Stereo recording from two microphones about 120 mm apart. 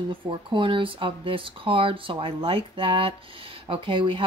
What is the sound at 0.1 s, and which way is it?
Speech, 45° right (ahead or behind).